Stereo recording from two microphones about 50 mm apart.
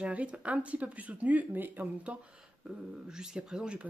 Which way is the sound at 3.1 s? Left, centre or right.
Centre.